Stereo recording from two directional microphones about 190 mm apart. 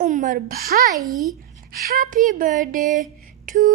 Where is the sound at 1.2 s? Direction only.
45° right (ahead or behind).